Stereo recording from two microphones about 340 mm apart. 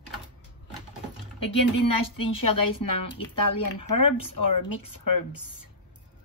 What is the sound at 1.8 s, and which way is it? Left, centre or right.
Speech, left.